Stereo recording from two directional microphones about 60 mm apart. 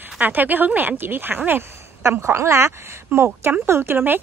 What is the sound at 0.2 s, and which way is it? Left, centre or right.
Speech, right.